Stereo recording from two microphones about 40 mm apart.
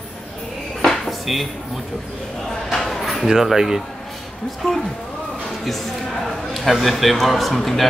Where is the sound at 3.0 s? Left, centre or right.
Centre.